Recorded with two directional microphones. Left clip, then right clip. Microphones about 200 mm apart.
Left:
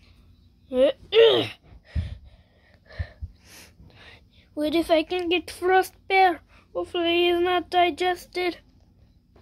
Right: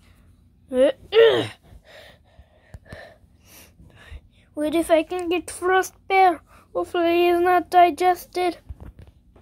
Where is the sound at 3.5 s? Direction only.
5° left (ahead or behind).